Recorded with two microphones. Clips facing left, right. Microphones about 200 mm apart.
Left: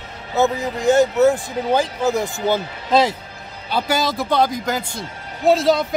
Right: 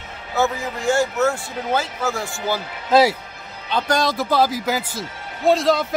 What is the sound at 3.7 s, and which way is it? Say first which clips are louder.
Speech: even; 5° left (ahead or behind).